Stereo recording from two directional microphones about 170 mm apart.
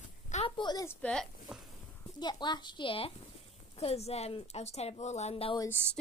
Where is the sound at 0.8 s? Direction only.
5° left (ahead or behind).